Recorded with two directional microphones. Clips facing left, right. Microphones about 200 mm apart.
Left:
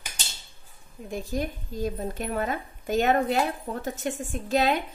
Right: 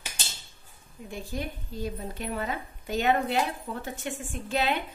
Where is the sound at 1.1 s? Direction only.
45° left (ahead or behind).